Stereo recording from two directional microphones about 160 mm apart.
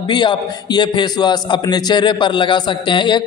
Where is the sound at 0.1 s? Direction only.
30° left (ahead or behind).